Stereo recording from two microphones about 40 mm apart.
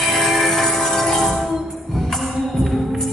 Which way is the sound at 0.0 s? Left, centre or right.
Centre.